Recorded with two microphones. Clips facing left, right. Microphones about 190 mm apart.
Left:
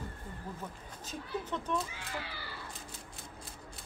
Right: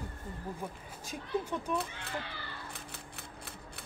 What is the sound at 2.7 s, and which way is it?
Typewriter, 65° right (ahead or behind).